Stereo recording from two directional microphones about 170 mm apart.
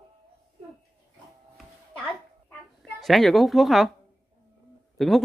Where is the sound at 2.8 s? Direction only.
Centre (ahead or behind).